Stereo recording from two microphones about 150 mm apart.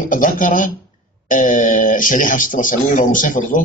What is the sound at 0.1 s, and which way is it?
Speech, 60° left (ahead or behind).